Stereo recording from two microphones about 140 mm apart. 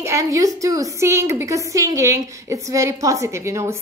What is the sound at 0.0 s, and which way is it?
A woman's voice, 20° right (ahead or behind).